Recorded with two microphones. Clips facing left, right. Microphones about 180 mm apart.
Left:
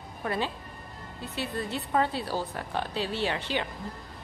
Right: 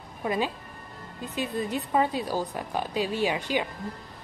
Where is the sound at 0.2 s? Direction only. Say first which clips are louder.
Right 3 dB; 15° right (ahead or behind).